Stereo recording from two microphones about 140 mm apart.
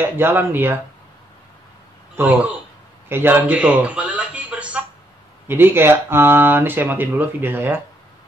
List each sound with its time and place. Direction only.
0.0 s speech: 15° right (ahead or behind)
2.1 s speech: 10° right (ahead or behind)
3.1 s a sound: 15° right (ahead or behind)
5.5 s speech: 15° right (ahead or behind)